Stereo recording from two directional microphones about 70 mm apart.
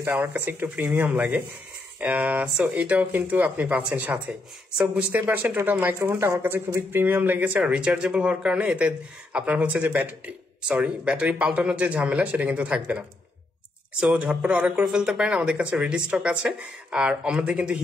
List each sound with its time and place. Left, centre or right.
0.1 s speech: centre
0.9 s speech: centre
14.0 s speech: centre